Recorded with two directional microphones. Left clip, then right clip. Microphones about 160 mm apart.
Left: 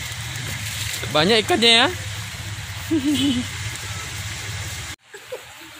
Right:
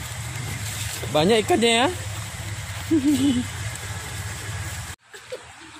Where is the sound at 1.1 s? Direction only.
5° right (ahead or behind).